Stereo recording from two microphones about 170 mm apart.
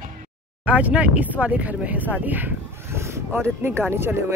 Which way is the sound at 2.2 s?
10° right (ahead or behind).